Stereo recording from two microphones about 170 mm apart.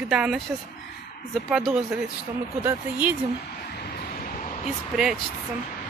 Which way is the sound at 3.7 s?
60° left (ahead or behind).